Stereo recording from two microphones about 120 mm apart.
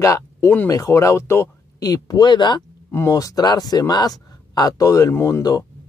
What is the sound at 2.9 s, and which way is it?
Speech, 25° left (ahead or behind).